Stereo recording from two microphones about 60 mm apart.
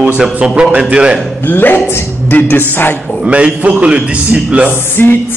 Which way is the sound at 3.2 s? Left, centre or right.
Centre.